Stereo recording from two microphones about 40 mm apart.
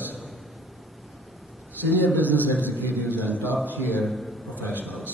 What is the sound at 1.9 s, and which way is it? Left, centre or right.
A man's voice, left.